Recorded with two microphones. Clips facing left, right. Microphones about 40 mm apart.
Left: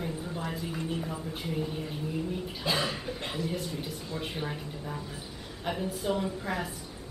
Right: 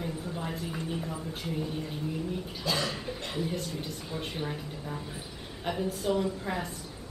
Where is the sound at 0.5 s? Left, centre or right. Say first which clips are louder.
Left 2 dB; centre.